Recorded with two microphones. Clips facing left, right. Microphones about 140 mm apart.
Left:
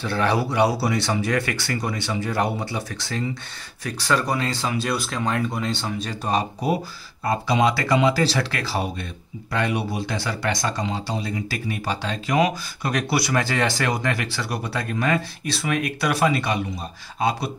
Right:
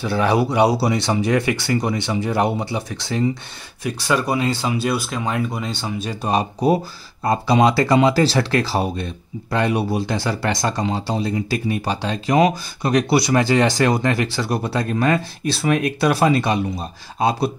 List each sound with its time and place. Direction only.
0.0 s speech: 10° right (ahead or behind)
7.2 s speech: 30° right (ahead or behind)
11.8 s speech: 25° right (ahead or behind)
13.8 s speech: 30° right (ahead or behind)